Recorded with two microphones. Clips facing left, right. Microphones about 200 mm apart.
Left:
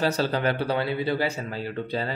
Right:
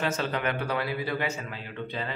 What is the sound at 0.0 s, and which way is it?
Speech, 35° left (ahead or behind).